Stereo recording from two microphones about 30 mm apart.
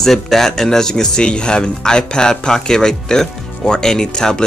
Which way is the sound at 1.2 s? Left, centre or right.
Left.